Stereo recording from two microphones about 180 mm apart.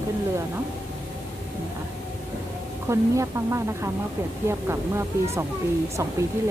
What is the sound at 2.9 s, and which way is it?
Speech, 15° right (ahead or behind).